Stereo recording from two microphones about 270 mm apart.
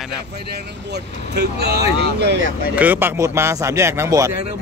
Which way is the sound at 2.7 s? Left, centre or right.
Centre.